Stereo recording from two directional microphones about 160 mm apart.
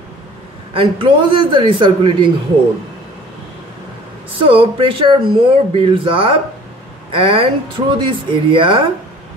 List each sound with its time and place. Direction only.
0.7 s speech: 30° right (ahead or behind)
4.5 s speech: 35° right (ahead or behind)